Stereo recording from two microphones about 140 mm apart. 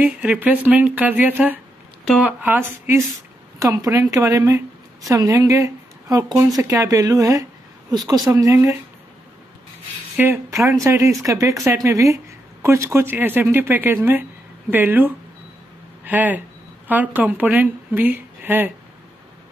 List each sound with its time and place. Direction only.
0.0 s speech: 10° right (ahead or behind)
3.5 s speech: 25° right (ahead or behind)
10.1 s speech: 15° right (ahead or behind)